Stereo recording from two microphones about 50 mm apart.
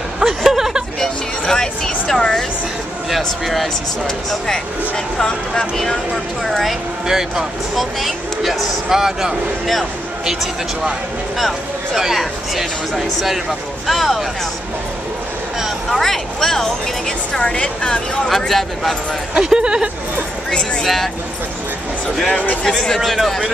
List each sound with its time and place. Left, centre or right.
0.2 s a sound: centre
0.9 s music: centre
3.1 s speech: centre
4.3 s speech: centre
7.1 s speech: centre
15.9 s speech: centre
18.3 s speech: centre
19.3 s speech: centre
20.8 s speech: centre
22.4 s speech: left
22.7 s speech: centre